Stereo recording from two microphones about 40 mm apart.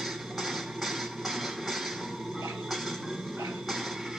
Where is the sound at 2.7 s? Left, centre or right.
Centre.